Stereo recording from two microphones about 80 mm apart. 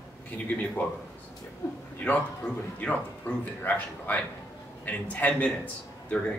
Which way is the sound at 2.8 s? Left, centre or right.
Left.